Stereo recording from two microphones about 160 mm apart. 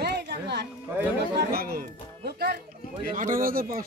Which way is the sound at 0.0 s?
90° right.